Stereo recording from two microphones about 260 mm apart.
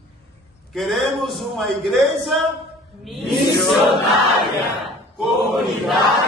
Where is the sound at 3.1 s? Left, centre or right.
Centre.